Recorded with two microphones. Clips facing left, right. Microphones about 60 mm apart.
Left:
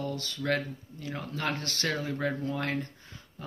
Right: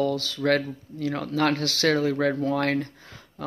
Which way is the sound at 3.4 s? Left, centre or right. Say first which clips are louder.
Right 9 dB; right.